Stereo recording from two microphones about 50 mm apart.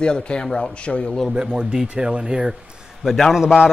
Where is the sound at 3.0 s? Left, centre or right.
Centre.